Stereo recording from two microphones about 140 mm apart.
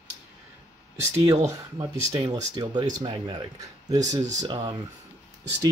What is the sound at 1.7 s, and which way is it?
Speech, 30° right (ahead or behind).